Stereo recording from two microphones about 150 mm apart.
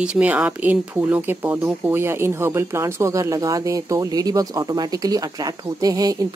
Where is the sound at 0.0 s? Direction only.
10° right (ahead or behind).